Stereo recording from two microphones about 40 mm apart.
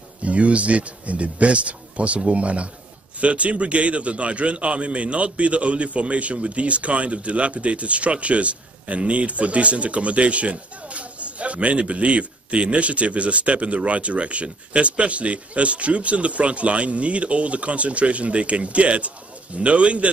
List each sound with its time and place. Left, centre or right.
0.2 s a man's voice: right